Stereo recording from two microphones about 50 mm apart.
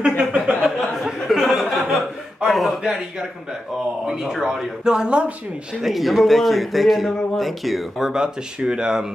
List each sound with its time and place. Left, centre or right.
0.2 s a sound: right
0.7 s a sound: centre
1.3 s chuckle: centre
2.8 s speech: centre
5.8 s a man's voice: centre
8.5 s speech: centre